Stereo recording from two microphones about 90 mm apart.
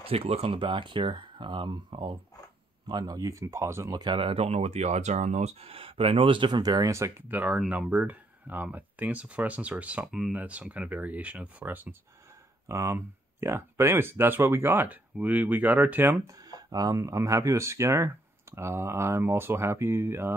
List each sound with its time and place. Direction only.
0.0 s speech: 90° right; by 2.1 s 60° right (ahead or behind)
2.9 s speech: 45° right (ahead or behind); by 3.9 s 30° right (ahead or behind)
3.9 s speech: 55° right (ahead or behind)
5.6 s speech: 90° right; by 6.9 s 45° right (ahead or behind)
6.9 s speech: 30° right (ahead or behind)
7.2 s speech: 20° right (ahead or behind)
12.6 s speech: 30° right (ahead or behind)
16.4 s speech: 45° right (ahead or behind); by 20.3 s 25° right (ahead or behind)